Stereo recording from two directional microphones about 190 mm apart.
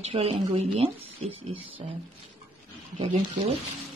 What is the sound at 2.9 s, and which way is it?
Speech, 35° right (ahead or behind).